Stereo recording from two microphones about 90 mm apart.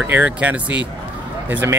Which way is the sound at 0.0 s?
20° right (ahead or behind).